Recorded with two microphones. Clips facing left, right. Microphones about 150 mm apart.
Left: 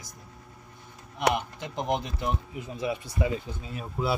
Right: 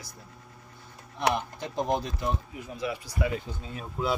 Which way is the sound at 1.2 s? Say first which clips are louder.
Left 1 dB; 20° left (ahead or behind).